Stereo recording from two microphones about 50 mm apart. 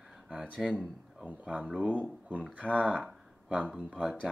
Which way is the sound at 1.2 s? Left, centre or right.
Right.